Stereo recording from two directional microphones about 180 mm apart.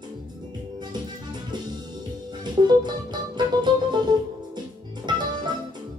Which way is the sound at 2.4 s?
25° right (ahead or behind).